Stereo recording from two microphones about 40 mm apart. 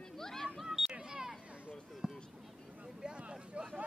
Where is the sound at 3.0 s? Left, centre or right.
Right.